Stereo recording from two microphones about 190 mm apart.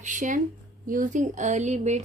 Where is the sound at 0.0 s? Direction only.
40° right (ahead or behind).